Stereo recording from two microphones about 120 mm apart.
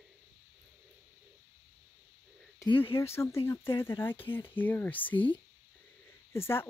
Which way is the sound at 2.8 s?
20° left (ahead or behind).